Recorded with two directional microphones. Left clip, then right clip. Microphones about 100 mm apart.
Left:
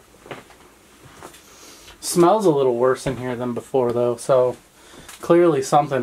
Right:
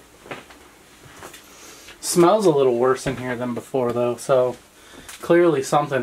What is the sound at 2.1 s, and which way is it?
Speech, 5° left (ahead or behind).